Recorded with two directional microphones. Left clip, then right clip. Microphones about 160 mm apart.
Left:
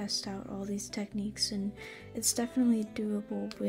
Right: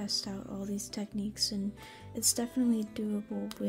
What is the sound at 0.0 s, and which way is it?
A woman's voice, 5° right (ahead or behind).